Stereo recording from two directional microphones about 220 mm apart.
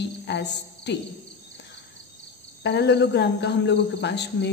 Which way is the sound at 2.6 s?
50° left (ahead or behind).